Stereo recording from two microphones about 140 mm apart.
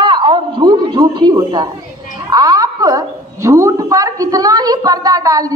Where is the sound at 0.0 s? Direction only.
35° right (ahead or behind).